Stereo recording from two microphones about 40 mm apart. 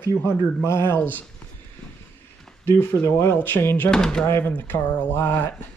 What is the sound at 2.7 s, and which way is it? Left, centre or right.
Speech, left.